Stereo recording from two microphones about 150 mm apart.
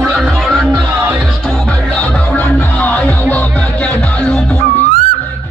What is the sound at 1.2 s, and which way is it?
Music, 5° left (ahead or behind).